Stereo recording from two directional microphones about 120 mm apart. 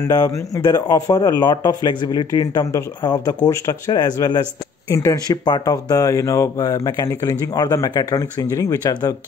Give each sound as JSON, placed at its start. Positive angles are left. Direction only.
{"t": 0.1, "sound": "speech", "side_deg": 30}